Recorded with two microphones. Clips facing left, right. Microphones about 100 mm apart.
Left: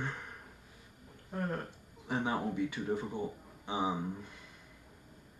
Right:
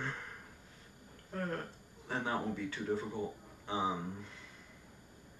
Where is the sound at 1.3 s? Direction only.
15° left (ahead or behind).